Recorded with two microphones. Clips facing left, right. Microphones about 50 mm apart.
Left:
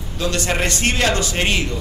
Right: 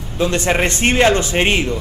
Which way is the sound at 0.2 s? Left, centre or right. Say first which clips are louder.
Right 4 dB; right.